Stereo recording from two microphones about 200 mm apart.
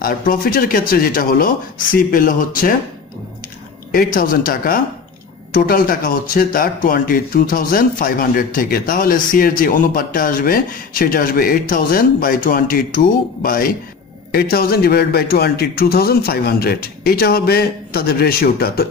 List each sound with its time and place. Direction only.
0.0 s speech: 45° left (ahead or behind)
3.9 s speech: 45° left (ahead or behind)